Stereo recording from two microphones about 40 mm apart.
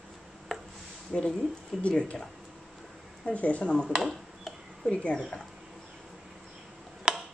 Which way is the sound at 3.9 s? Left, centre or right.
Centre.